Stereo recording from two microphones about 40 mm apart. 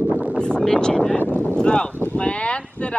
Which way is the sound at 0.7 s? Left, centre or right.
Centre.